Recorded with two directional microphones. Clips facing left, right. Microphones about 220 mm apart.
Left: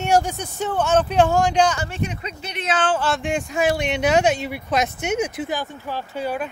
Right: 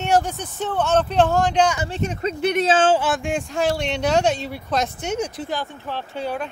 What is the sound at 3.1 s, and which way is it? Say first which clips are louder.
Speech: even; centre (ahead or behind).